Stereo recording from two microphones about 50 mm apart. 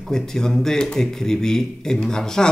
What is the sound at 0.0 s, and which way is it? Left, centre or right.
Speech, centre.